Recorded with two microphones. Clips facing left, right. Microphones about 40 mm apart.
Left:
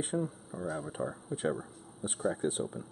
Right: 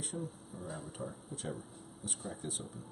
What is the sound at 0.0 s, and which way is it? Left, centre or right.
Speech, left.